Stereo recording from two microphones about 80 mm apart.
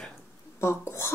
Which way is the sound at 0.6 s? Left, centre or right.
Left.